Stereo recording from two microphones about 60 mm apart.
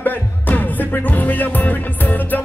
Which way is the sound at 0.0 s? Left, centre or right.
Left.